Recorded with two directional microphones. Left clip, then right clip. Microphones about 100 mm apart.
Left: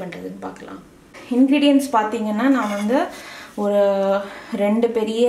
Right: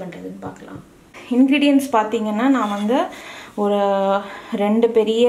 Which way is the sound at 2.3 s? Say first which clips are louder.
Even; 25° right (ahead or behind).